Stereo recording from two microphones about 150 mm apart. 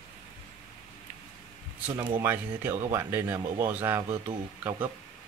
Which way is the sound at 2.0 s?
15° right (ahead or behind).